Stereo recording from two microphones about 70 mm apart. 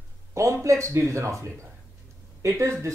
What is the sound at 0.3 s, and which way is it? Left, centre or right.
Speech, right.